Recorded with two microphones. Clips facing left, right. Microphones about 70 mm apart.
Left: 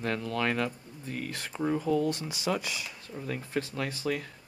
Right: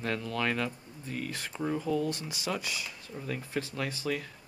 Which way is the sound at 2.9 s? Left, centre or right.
Centre.